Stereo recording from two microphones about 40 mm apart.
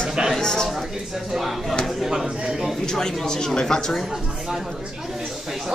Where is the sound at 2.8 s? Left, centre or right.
Centre.